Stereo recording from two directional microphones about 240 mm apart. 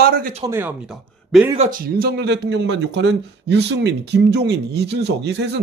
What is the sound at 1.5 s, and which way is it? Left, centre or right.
Speech, right.